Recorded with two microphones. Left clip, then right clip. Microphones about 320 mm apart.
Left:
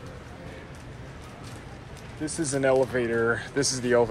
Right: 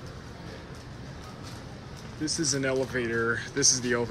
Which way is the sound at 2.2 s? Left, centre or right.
Centre.